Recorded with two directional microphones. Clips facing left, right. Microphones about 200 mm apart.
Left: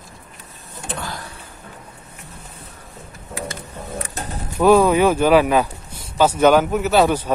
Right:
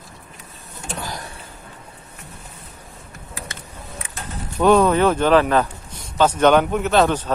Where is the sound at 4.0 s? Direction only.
40° left (ahead or behind).